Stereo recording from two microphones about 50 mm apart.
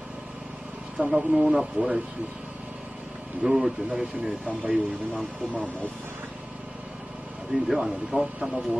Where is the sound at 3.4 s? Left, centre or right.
Centre.